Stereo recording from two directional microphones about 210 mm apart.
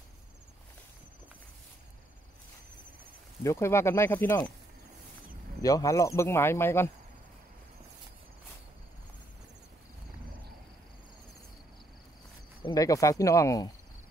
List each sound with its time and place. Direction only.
3.4 s speech: 10° left (ahead or behind)
5.6 s speech: 15° left (ahead or behind)
12.6 s speech: 15° left (ahead or behind)